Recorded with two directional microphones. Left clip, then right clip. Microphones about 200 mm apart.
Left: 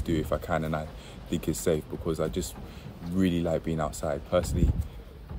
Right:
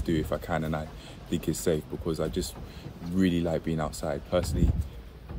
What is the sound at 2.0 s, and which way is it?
Speech, 10° left (ahead or behind).